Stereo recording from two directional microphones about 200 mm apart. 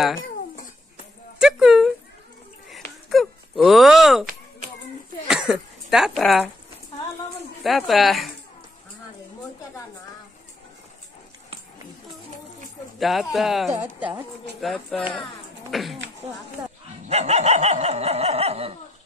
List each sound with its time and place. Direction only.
1.4 s a sound: centre (ahead or behind)
5.3 s speech: 5° right (ahead or behind)
7.6 s speech: centre (ahead or behind)
13.0 s a woman's voice: centre (ahead or behind)
14.6 s speech: centre (ahead or behind)
17.1 s dog: 35° right (ahead or behind)